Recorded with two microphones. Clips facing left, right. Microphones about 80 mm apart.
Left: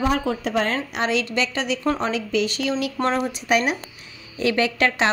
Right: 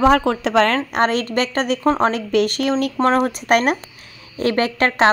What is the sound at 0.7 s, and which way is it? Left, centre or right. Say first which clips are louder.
Speech: right 5 dB; right.